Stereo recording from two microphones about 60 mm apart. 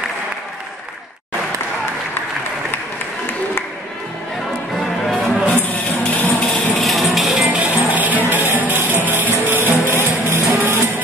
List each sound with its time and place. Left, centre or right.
4.7 s music: centre
5.6 s music: left
6.8 s music: centre
7.5 s music: right